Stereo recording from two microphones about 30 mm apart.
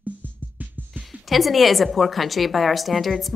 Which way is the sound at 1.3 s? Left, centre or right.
Centre.